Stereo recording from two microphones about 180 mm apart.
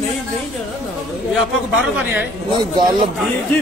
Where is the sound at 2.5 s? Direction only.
25° right (ahead or behind).